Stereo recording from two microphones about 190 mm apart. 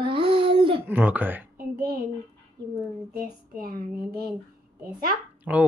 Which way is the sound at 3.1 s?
50° right (ahead or behind).